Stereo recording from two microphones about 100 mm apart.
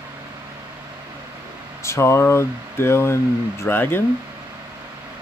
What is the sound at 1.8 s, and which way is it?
Speech, 30° left (ahead or behind).